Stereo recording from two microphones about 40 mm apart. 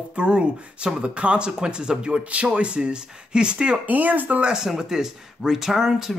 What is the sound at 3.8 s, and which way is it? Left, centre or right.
Speech, right.